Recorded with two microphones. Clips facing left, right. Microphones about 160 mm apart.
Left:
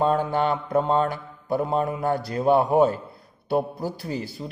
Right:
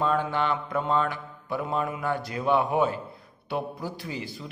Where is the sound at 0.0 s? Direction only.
40° left (ahead or behind).